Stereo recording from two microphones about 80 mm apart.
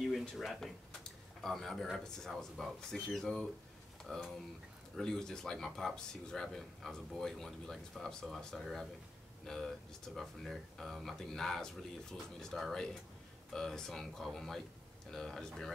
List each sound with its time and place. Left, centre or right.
0.1 s speech: centre